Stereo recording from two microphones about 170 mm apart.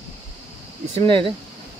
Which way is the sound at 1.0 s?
30° right (ahead or behind).